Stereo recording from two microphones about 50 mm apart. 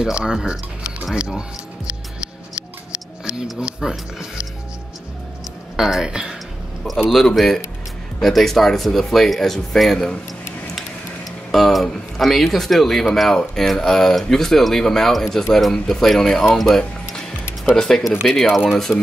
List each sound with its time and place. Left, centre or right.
0.0 s speech: centre
3.5 s speech: centre
5.8 s speech: centre
7.1 s speech: centre
11.5 s speech: centre